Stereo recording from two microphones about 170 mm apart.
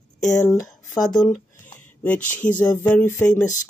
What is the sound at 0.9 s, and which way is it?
Speech, 5° left (ahead or behind).